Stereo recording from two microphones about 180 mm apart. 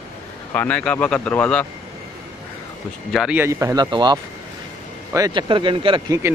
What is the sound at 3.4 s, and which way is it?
Speech, 15° right (ahead or behind).